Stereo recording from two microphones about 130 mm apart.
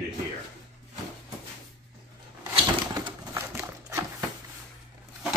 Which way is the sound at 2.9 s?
30° right (ahead or behind).